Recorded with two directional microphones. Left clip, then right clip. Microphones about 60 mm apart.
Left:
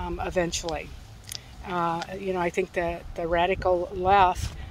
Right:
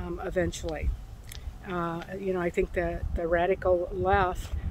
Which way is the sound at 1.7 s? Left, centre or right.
Right.